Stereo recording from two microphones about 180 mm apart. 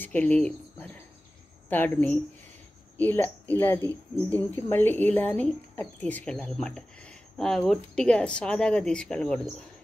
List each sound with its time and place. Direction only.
0.0 s speech: 10° left (ahead or behind)